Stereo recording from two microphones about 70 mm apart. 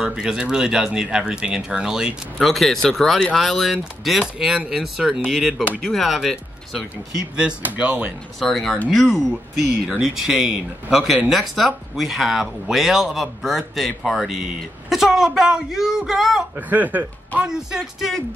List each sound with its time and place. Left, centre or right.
0.0 s speech: centre
7.3 s speech: centre
8.4 s speech: centre
16.5 s speech: right
17.4 s speech: centre